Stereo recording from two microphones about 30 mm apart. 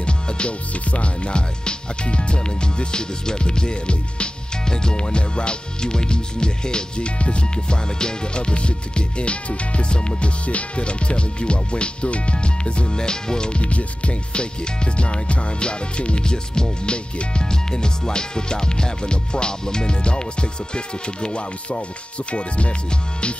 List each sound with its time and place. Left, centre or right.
0.0 s speech: left
7.2 s music: left
13.6 s music: left
16.2 s music: left